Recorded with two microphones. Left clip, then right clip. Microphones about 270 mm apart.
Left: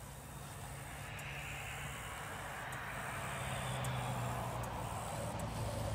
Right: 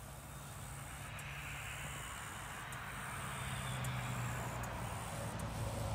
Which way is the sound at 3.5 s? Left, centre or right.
Centre.